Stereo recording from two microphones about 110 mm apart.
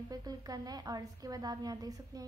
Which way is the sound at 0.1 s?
35° right (ahead or behind).